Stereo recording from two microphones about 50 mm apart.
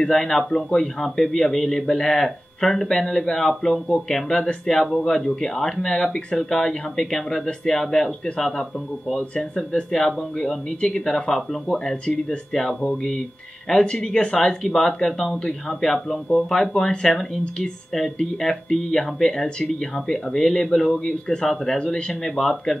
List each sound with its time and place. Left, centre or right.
0.0 s speech: centre
9.8 s speech: centre
22.2 s speech: centre